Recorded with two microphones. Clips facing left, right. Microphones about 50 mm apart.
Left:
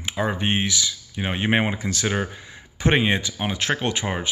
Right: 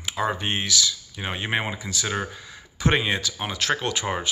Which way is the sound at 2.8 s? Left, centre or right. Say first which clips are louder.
Left 2 dB; left.